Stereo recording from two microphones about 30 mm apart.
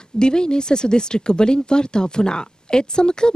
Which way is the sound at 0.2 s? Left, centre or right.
Left.